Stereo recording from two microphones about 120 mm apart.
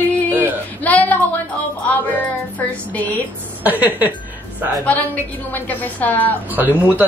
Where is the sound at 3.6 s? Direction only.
15° right (ahead or behind).